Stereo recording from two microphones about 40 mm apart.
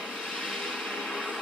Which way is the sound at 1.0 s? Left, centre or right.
Centre.